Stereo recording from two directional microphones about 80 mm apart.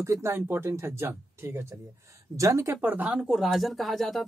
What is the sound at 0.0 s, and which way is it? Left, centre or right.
A man's voice, right.